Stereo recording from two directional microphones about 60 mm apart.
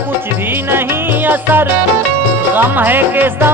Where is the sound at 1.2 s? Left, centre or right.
Right.